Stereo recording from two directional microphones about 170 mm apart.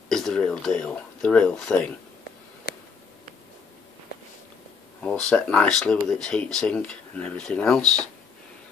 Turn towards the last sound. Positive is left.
turn(degrees=5)  # may be behind; listen again after turning